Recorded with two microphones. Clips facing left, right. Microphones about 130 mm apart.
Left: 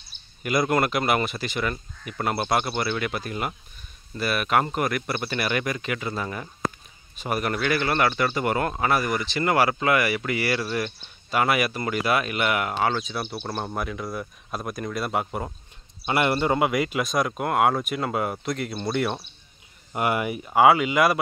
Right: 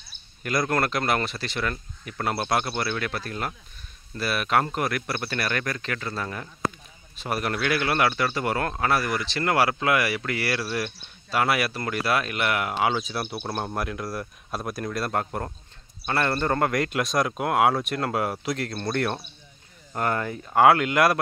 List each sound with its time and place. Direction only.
0.4 s speech: 5° left (ahead or behind)
16.1 s speech: 15° left (ahead or behind)